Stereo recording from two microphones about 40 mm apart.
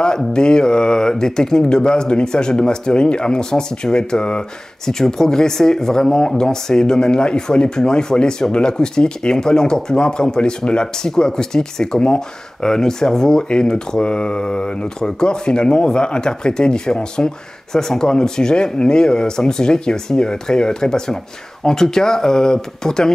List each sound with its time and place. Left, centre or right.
0.3 s speech: left